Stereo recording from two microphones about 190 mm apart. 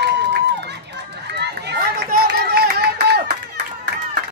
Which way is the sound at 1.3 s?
55° right (ahead or behind).